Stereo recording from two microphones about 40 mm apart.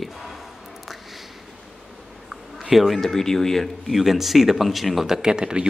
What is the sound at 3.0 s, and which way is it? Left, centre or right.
Speech, centre.